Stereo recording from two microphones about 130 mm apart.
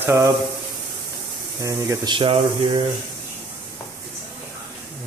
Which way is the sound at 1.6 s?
25° right (ahead or behind).